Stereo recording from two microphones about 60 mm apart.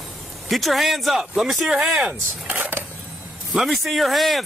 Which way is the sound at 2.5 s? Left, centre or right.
Right.